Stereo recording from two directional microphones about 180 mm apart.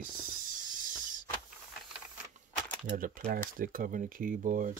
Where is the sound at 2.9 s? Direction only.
50° right (ahead or behind).